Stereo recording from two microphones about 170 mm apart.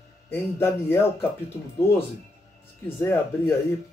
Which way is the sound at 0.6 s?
15° left (ahead or behind).